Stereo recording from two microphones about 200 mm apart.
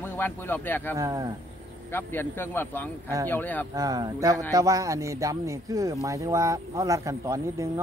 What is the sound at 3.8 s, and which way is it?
Speech, 15° right (ahead or behind).